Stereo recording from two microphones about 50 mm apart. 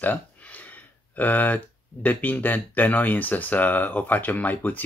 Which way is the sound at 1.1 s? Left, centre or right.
Left.